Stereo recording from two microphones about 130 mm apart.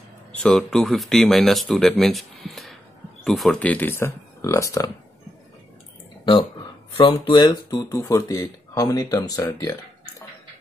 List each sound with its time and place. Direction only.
0.3 s speech: 5° left (ahead or behind); by 4.9 s 25° left (ahead or behind)
7.0 s speech: 35° left (ahead or behind)